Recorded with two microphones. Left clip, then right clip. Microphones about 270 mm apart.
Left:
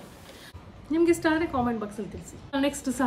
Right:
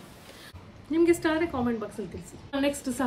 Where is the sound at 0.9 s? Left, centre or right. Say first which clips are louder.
Left 1 dB; centre.